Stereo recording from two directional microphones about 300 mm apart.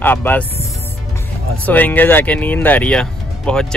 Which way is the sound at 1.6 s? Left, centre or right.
Centre.